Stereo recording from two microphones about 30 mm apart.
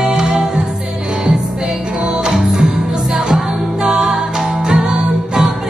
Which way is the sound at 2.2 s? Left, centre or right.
Centre.